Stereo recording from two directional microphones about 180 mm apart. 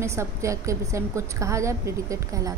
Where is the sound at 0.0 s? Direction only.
15° right (ahead or behind).